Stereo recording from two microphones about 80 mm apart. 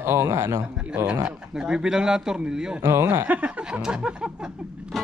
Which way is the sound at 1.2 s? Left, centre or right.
Centre.